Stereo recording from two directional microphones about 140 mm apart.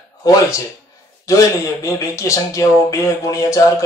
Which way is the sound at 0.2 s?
25° left (ahead or behind).